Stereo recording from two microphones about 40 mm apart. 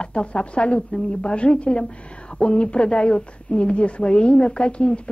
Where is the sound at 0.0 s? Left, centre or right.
Left.